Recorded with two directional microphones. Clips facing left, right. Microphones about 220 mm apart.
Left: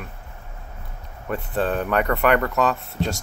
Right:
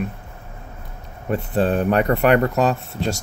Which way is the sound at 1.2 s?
30° right (ahead or behind).